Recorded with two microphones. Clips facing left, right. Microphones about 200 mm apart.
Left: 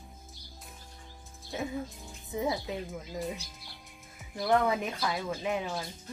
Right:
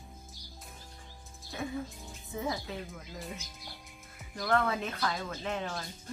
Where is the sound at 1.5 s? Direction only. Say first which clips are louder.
Left 3 dB; 20° left (ahead or behind).